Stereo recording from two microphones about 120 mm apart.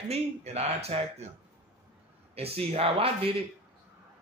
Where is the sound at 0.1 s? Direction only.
65° right (ahead or behind).